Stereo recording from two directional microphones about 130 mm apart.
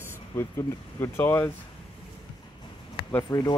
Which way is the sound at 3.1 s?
30° left (ahead or behind).